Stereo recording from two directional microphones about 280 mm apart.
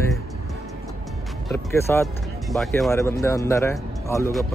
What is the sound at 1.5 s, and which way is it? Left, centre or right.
Speech, centre.